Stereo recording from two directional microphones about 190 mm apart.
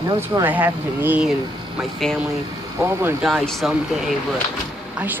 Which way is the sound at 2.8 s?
15° right (ahead or behind).